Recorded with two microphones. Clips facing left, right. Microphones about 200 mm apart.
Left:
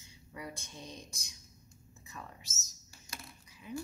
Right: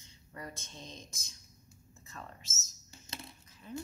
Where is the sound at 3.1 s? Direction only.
25° right (ahead or behind).